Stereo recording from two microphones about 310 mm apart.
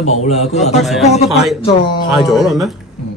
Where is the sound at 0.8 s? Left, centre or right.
Centre.